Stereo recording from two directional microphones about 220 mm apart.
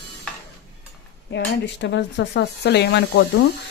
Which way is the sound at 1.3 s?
50° left (ahead or behind).